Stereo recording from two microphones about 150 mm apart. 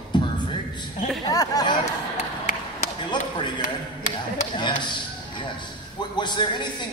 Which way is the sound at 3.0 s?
30° left (ahead or behind).